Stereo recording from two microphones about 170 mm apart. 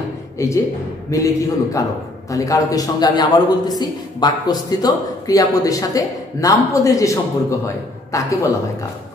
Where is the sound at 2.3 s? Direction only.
20° left (ahead or behind).